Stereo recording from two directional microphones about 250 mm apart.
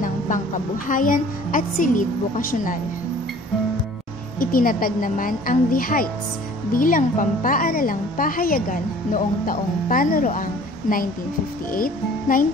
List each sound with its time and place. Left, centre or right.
0.8 s a woman's voice: left
4.4 s a woman's voice: left